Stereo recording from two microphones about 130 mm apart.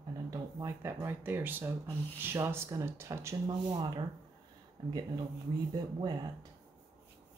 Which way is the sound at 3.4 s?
35° right (ahead or behind).